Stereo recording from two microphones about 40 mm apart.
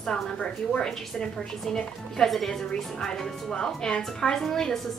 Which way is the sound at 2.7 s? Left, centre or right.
Centre.